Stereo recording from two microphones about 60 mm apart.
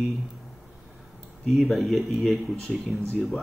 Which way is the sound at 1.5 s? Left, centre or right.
Centre.